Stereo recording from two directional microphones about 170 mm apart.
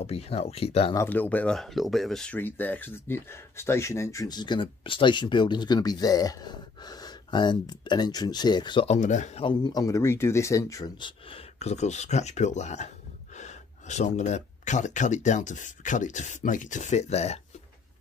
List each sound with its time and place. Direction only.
0.0 s speech: 35° left (ahead or behind)
0.9 s speech: 10° left (ahead or behind); by 8.8 s 25° left (ahead or behind)
8.8 s speech: 45° left (ahead or behind)